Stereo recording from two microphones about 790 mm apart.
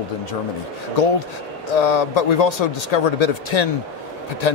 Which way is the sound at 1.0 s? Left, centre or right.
Left.